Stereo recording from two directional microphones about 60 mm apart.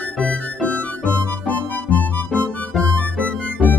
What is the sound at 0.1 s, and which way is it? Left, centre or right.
Music, centre.